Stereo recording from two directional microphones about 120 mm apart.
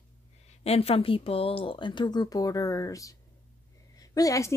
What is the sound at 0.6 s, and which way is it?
A woman's voice, 55° left (ahead or behind).